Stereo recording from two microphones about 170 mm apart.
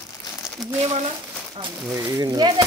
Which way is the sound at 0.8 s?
40° right (ahead or behind).